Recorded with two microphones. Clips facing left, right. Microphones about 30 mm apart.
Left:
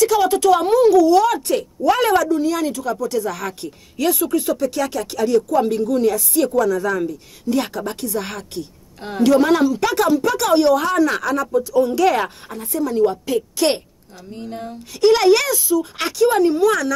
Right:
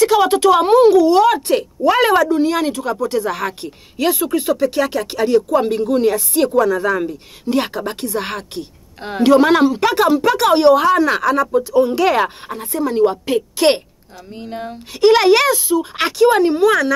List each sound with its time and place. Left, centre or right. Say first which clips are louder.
0.0 s speech: right 3 dB; right